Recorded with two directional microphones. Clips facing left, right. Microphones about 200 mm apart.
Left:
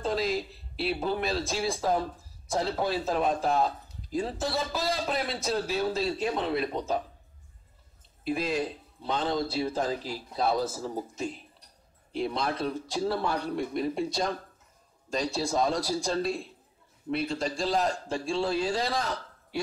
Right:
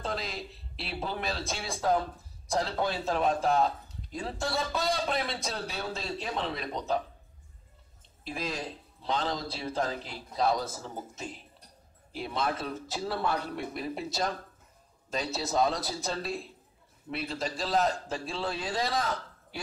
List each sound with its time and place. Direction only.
0.0 s a man's voice: centre (ahead or behind)
8.2 s a man's voice: 5° left (ahead or behind)
18.3 s a man's voice: 30° left (ahead or behind)
18.7 s a man's voice: centre (ahead or behind)